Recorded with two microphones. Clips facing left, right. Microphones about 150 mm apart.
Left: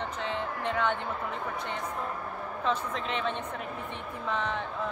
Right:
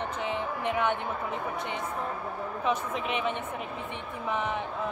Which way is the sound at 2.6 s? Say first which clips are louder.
Right 1 dB; 15° right (ahead or behind).